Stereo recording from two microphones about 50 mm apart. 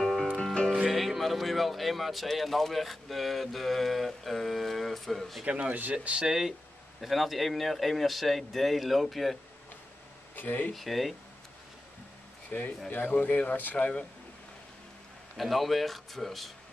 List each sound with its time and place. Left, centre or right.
0.0 s music: centre
0.8 s speech: centre
5.4 s speech: right
6.2 s speech: centre
10.3 s speech: left
10.7 s speech: centre
12.4 s speech: left
15.3 s speech: centre